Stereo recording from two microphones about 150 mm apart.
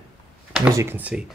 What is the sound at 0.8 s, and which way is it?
Speech, 15° right (ahead or behind).